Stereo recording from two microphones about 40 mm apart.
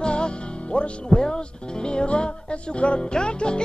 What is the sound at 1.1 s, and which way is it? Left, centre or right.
Speech, centre.